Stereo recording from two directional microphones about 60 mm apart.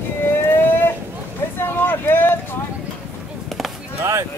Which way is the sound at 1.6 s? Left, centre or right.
Left.